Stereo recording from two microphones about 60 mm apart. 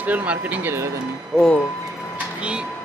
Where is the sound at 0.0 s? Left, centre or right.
Right.